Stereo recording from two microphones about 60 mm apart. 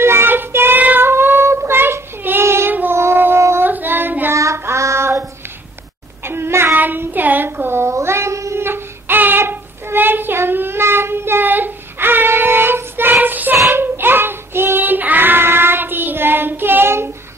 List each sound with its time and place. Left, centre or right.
0.0 s child singing: right
2.7 s child singing: right
3.0 s a sound: right
3.6 s child singing: right
4.3 s child singing: right
6.2 s child singing: right
6.8 s child singing: right
7.9 s cat: right
8.5 s child singing: right